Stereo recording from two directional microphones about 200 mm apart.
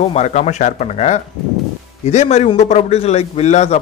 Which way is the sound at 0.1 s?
35° left (ahead or behind).